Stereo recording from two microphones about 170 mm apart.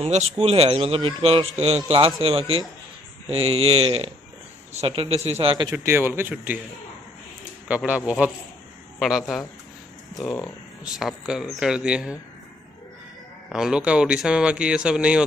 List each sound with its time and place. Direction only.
0.0 s speech: 40° right (ahead or behind)
5.7 s speech: 15° right (ahead or behind)
7.6 s speech: 10° right (ahead or behind)
9.3 s speech: 5° right (ahead or behind)
10.1 s speech: 10° left (ahead or behind)
10.9 s speech: 5° right (ahead or behind)
13.5 s speech: 5° right (ahead or behind)